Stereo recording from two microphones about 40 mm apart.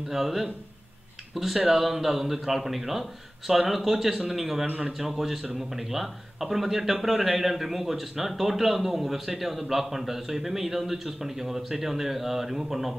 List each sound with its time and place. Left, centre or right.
0.1 s speech: centre